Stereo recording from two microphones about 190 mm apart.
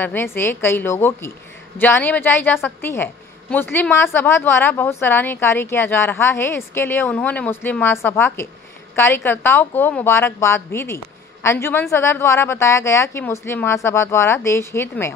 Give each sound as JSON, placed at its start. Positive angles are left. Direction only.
{"t": 0.0, "sound": "a woman's voice", "side_deg": 10}